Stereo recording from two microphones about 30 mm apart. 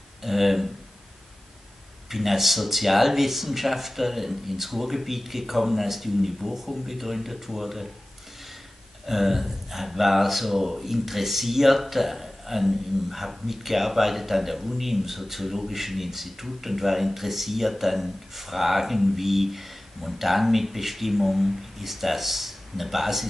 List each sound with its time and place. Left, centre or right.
0.2 s speech: centre
2.0 s speech: centre
9.0 s speech: centre